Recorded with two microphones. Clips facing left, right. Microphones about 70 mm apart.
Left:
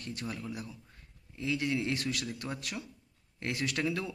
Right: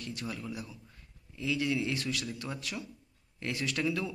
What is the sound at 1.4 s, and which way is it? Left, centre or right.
Speech, left.